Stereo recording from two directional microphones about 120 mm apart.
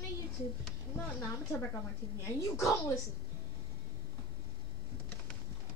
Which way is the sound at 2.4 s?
25° left (ahead or behind).